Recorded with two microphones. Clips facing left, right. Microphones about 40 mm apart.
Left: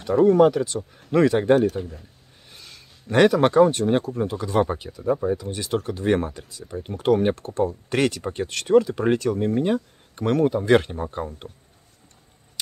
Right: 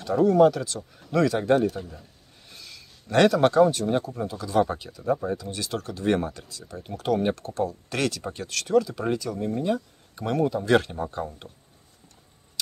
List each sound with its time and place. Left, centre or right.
0.0 s speech: left
2.5 s a sound: left
3.3 s speech: left
3.7 s speech: left; by 5.1 s centre
5.1 s speech: centre
5.4 s speech: left
10.5 s speech: left